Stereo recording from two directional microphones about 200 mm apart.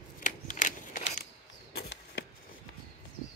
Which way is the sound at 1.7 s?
60° left (ahead or behind).